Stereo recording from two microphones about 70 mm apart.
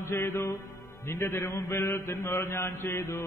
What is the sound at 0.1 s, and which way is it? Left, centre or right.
Mantra, left.